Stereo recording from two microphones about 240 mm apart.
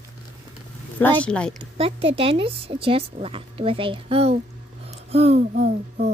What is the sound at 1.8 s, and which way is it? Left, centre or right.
A woman's voice, right.